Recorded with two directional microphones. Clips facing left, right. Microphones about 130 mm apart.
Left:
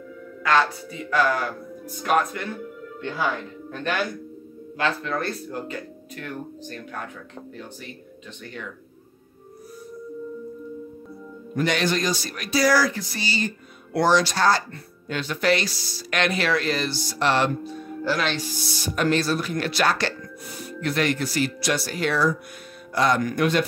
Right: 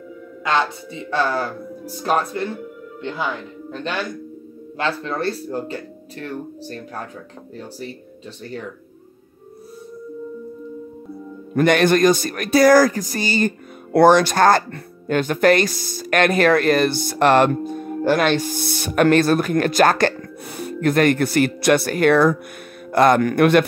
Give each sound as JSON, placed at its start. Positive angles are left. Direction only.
{"t": 0.4, "sound": "speech", "side_deg": -25}
{"t": 3.0, "sound": "speech", "side_deg": -20}
{"t": 4.7, "sound": "speech", "side_deg": -30}
{"t": 11.5, "sound": "speech", "side_deg": -55}